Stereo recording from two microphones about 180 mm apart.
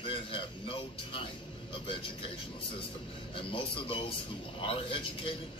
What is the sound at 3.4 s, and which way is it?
A man's voice, 30° left (ahead or behind).